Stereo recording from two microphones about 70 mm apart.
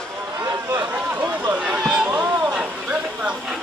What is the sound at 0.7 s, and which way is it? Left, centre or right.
Run, right.